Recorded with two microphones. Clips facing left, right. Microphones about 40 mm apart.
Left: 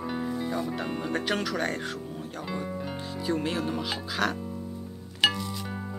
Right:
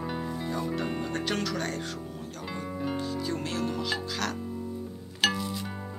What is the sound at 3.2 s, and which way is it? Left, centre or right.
Speech, centre.